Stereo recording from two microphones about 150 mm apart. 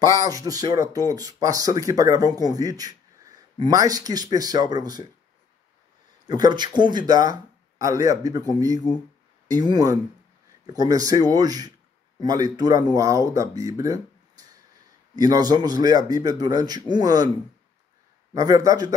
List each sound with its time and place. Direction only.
0.1 s speech: 25° right (ahead or behind)
6.2 s speech: 25° right (ahead or behind)
15.1 s speech: 25° right (ahead or behind)
18.3 s speech: 25° right (ahead or behind)